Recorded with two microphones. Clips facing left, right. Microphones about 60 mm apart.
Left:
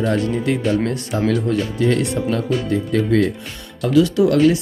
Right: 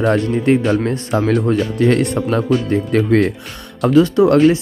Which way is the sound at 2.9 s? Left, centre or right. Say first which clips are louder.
Right 3 dB; right.